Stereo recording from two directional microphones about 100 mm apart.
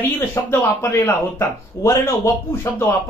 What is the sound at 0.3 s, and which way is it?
Speech, 30° left (ahead or behind).